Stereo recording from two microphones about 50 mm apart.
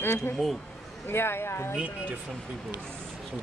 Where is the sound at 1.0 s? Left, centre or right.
Left.